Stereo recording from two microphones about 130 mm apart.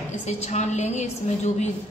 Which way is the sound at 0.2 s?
60° left (ahead or behind).